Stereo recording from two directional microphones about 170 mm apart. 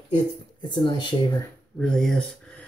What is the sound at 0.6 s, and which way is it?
Speech, 25° left (ahead or behind).